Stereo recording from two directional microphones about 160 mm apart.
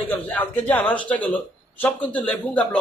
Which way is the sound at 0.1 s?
10° left (ahead or behind).